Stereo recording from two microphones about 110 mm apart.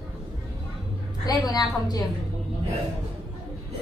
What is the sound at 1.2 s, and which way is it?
Speech, 40° left (ahead or behind).